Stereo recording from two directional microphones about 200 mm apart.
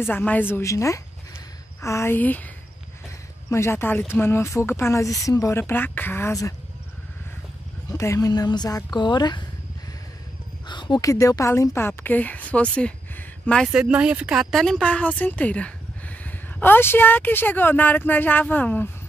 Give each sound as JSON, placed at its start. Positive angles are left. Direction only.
{"t": 0.0, "sound": "speech", "side_deg": 10}
{"t": 3.4, "sound": "speech", "side_deg": 15}
{"t": 7.9, "sound": "speech", "side_deg": 15}
{"t": 10.7, "sound": "speech", "side_deg": 20}